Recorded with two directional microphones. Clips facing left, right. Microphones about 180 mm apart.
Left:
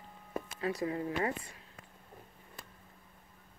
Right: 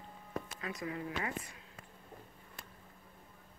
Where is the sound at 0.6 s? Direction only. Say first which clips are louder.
Left 9 dB; 30° left (ahead or behind).